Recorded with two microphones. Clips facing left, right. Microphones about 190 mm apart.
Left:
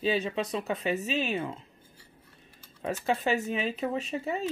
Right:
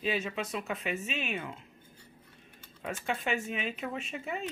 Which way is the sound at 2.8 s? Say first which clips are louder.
Left 5 dB; 35° left (ahead or behind).